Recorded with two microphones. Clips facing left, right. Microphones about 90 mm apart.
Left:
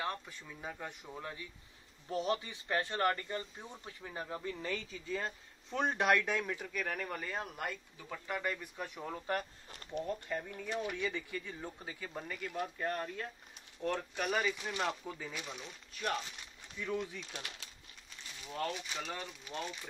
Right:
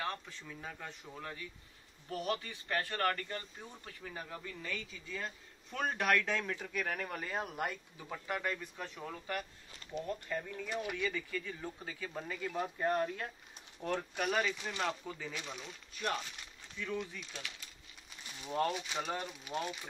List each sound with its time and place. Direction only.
0.0 s speech: 10° left (ahead or behind)
9.7 s speech: 50° left (ahead or behind)
10.0 s speech: 15° left (ahead or behind); by 12.6 s centre (ahead or behind)
12.6 s speech: 20° right (ahead or behind)
14.1 s speech: centre (ahead or behind)
18.7 s speech: 5° right (ahead or behind)